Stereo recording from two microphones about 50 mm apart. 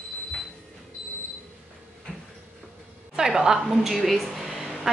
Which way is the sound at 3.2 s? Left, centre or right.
Centre.